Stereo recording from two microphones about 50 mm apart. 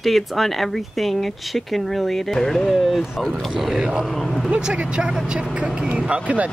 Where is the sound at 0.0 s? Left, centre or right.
Centre.